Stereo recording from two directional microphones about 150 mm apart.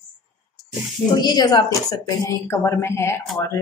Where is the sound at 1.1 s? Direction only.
30° left (ahead or behind).